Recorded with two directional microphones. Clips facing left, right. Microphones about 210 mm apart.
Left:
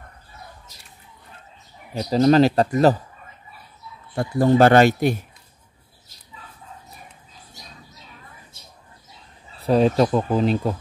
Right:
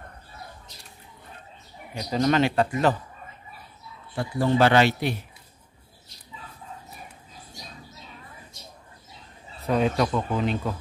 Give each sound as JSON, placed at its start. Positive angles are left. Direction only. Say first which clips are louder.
{"t": 2.0, "sound": "speech", "louder": "left 7 dB", "side_deg": 35}
{"t": 4.1, "sound": "speech", "louder": "left 6 dB", "side_deg": 45}
{"t": 9.6, "sound": "speech", "louder": "left 6 dB", "side_deg": 35}